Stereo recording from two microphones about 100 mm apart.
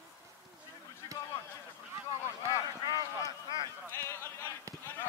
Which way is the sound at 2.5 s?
35° left (ahead or behind).